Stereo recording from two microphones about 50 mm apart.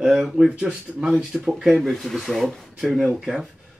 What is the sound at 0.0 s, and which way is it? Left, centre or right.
Speech, centre.